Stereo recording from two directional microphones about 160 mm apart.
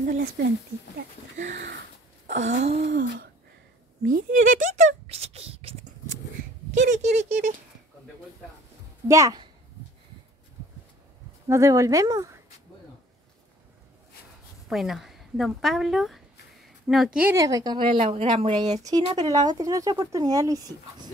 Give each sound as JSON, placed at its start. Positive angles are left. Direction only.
{"t": 0.0, "sound": "speech", "side_deg": -60}
{"t": 1.3, "sound": "a sound", "side_deg": -55}
{"t": 1.6, "sound": "a sound", "side_deg": -90}
{"t": 2.2, "sound": "a sound", "side_deg": -50}
{"t": 2.8, "sound": "speech", "side_deg": -80}
{"t": 4.0, "sound": "speech", "side_deg": -55}
{"t": 6.7, "sound": "speech", "side_deg": -50}
{"t": 9.0, "sound": "speech", "side_deg": -20}
{"t": 11.4, "sound": "speech", "side_deg": -20}
{"t": 14.7, "sound": "a woman's voice", "side_deg": 0}
{"t": 17.4, "sound": "speech", "side_deg": -20}
{"t": 18.9, "sound": "speech", "side_deg": -25}